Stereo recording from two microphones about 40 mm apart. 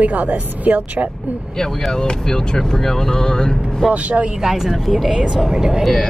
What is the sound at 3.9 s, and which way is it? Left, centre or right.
Speech, right.